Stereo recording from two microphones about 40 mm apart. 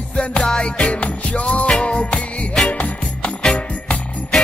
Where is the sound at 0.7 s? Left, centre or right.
Left.